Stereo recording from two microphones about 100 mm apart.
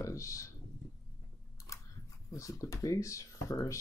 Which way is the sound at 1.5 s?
35° left (ahead or behind).